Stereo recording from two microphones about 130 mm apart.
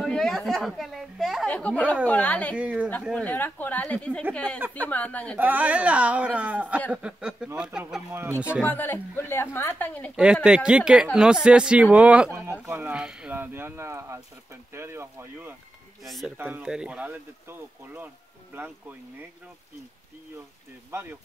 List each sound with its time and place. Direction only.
0.0 s a woman's voice: 5° left (ahead or behind)
1.5 s a woman's voice: 10° left (ahead or behind)
2.5 s speech: 10° right (ahead or behind)
3.1 s a woman's voice: 10° left (ahead or behind)
5.4 s speech: 10° right (ahead or behind)
8.1 s speech: 20° right (ahead or behind)
8.6 s a woman's voice: 15° left (ahead or behind)
10.1 s speech: 5° right (ahead or behind)
16.0 s speech: centre (ahead or behind)
16.3 s speech: 15° right (ahead or behind)
20.9 s speech: 20° right (ahead or behind)